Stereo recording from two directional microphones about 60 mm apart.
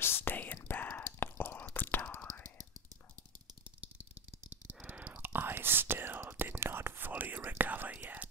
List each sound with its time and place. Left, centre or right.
0.0 s whispering: left
4.6 s whispering: right